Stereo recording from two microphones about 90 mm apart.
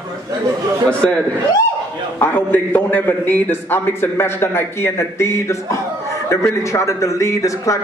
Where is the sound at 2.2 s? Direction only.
20° left (ahead or behind).